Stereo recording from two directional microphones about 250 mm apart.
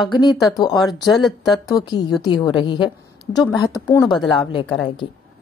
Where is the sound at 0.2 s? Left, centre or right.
Centre.